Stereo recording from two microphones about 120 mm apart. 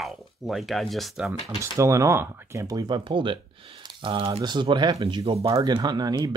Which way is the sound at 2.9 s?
45° right (ahead or behind).